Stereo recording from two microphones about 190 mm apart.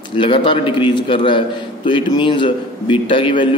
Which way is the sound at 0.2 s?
25° left (ahead or behind).